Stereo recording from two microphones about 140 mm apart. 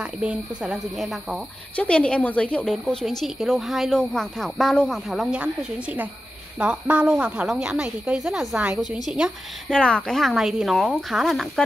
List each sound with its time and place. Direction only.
0.0 s speech: 10° right (ahead or behind)
9.7 s speech: 5° left (ahead or behind)